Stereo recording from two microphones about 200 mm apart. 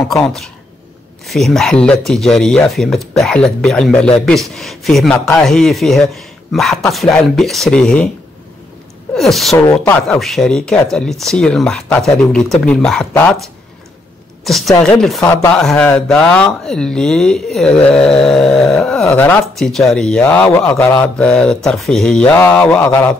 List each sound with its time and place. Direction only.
0.2 s a man's voice: centre (ahead or behind)
9.1 s speech: centre (ahead or behind)
9.7 s speech: 10° left (ahead or behind)
10.0 s a man's voice: centre (ahead or behind)
14.4 s a man's voice: centre (ahead or behind)